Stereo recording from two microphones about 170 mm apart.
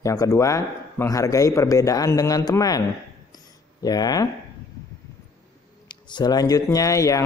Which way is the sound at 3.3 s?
25° left (ahead or behind).